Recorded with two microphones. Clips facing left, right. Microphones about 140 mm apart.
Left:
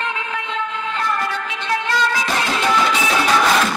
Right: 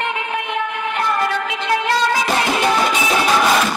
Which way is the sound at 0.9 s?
20° right (ahead or behind).